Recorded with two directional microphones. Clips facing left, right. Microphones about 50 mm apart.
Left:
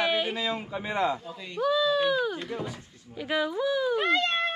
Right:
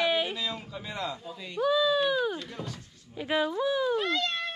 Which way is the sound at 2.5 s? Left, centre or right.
Centre.